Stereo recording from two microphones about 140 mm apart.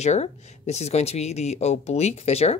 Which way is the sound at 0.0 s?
55° left (ahead or behind).